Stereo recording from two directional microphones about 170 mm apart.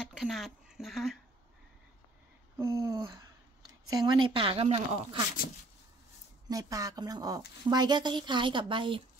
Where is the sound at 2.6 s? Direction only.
15° right (ahead or behind).